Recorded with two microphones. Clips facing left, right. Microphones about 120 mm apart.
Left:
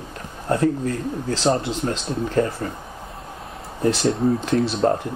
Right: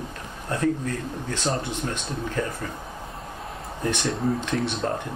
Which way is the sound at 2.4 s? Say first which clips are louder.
Left 8 dB; 40° left (ahead or behind).